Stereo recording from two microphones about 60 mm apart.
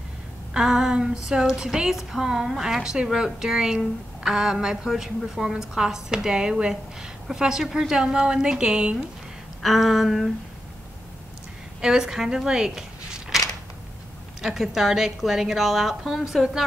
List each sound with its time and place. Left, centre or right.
0.5 s a sound: centre
1.2 s speech: centre
9.6 s a woman's voice: centre
11.8 s speech: centre
14.4 s a woman's voice: centre